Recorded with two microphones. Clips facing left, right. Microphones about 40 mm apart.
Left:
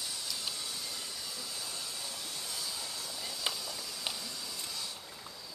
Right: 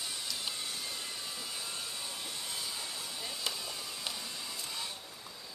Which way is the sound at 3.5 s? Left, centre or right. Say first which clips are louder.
Left 2 dB; left.